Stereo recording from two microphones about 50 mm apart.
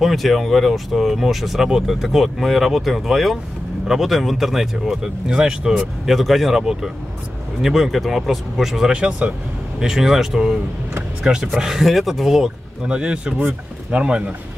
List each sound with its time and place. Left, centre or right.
0.0 s speech: centre
5.8 s speech: centre
8.9 s speech: right
9.8 s speech: centre
12.8 s speech: centre